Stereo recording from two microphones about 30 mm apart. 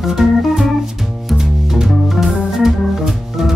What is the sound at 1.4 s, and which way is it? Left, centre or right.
Music, centre.